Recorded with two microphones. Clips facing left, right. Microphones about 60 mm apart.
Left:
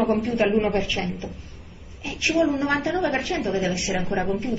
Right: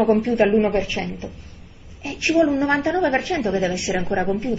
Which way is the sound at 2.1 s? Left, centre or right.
Right.